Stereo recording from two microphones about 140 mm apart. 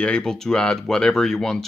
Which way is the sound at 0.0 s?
5° left (ahead or behind).